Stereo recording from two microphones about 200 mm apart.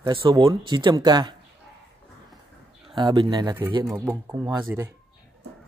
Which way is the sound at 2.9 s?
25° right (ahead or behind).